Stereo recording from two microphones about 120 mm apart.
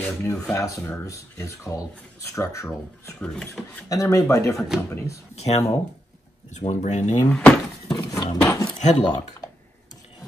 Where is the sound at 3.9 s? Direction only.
30° left (ahead or behind).